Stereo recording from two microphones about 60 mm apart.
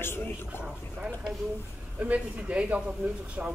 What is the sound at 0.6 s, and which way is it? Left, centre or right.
Speech, centre.